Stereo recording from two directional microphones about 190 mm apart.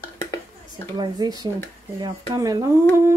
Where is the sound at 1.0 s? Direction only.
20° right (ahead or behind).